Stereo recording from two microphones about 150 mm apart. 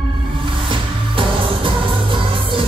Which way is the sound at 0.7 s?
35° right (ahead or behind).